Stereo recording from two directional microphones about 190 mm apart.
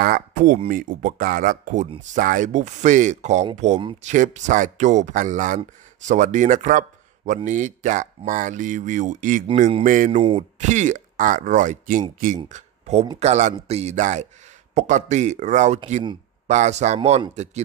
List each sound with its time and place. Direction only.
0.0 s a sound: 50° right (ahead or behind)
0.7 s speech: 45° right (ahead or behind)
9.6 s a man's voice: 30° right (ahead or behind)
9.8 s speech: 45° right (ahead or behind)